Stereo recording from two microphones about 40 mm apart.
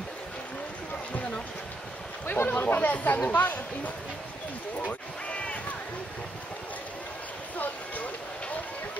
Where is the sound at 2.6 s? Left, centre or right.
Left.